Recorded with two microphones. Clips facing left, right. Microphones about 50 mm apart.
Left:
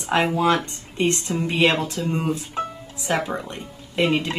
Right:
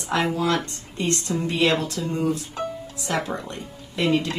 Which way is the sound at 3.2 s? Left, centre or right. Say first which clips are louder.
Left 1 dB; left.